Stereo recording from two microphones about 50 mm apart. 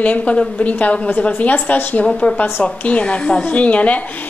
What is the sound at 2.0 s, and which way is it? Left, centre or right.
A woman's voice, centre.